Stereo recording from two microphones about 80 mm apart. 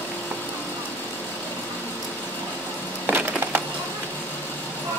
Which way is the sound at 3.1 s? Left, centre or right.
Right.